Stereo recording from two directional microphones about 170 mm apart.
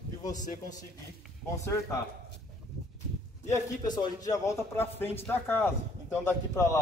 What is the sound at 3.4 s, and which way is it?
A man's voice, 20° left (ahead or behind).